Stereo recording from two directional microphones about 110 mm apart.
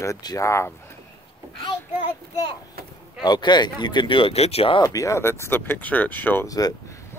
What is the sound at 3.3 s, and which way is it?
Speech, 40° left (ahead or behind).